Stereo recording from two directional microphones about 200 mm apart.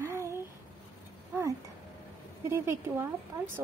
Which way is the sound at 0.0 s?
15° right (ahead or behind).